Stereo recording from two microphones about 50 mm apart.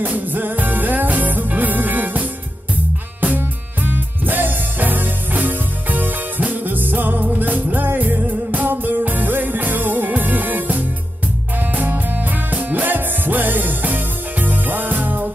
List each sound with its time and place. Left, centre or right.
0.0 s music: right